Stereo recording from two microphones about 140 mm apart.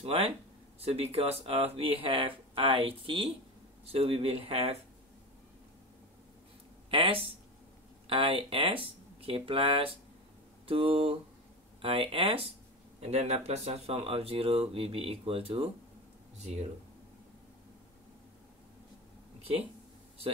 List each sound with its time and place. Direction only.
0.0 s speech: 45° right (ahead or behind)
6.9 s speech: 40° right (ahead or behind)